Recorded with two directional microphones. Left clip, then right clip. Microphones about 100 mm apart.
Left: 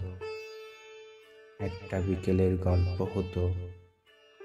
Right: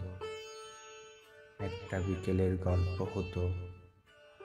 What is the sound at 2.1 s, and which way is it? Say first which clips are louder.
Speech: left 6 dB; 15° left (ahead or behind).